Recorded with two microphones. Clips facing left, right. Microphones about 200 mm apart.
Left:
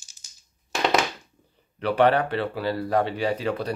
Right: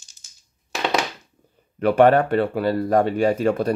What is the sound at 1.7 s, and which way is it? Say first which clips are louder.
Speech: right 5 dB; 45° right (ahead or behind).